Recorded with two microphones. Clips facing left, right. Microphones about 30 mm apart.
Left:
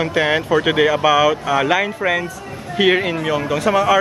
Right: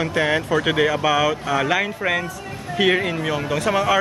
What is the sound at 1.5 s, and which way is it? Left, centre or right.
Speech, centre.